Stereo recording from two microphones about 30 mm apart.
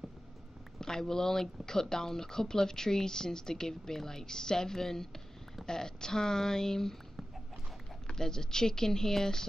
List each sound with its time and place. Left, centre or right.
0.7 s speech: centre
8.1 s speech: centre